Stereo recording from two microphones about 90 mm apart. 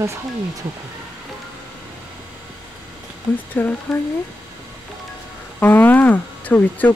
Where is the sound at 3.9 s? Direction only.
Centre (ahead or behind).